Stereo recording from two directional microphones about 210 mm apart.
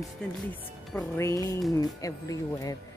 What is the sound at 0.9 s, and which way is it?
Speech, 10° left (ahead or behind).